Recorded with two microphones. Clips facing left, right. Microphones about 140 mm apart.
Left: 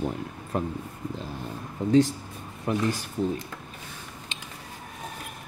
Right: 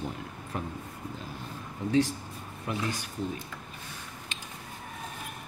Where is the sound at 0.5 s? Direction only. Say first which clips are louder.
Left 7 dB; 35° left (ahead or behind).